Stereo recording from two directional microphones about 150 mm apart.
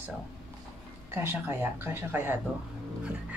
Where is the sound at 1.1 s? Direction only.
15° right (ahead or behind).